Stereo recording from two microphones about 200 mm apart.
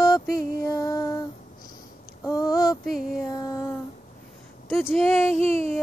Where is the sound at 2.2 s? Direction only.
20° left (ahead or behind).